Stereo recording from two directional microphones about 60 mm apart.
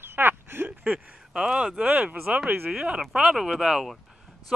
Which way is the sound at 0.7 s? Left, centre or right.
Right.